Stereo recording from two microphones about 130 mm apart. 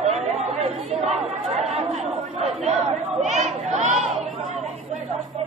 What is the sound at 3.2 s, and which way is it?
Crowd, 60° right (ahead or behind).